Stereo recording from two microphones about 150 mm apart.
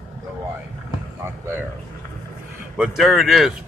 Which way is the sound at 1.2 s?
15° right (ahead or behind).